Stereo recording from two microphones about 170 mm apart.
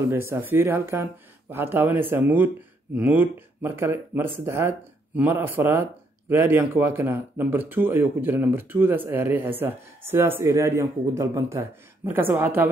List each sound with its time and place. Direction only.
0.1 s speech: 15° right (ahead or behind)